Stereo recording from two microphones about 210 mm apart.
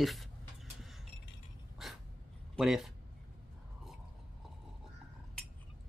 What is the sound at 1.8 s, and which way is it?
Dog, centre (ahead or behind).